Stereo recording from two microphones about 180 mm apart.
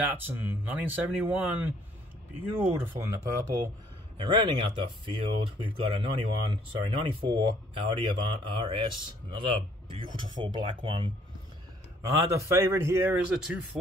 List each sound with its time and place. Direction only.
0.0 s speech: 10° right (ahead or behind)